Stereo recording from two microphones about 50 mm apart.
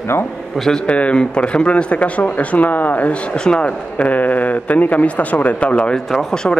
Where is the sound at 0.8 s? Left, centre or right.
Left.